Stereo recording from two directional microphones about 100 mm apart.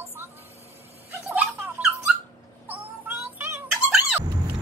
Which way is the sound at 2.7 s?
20° right (ahead or behind).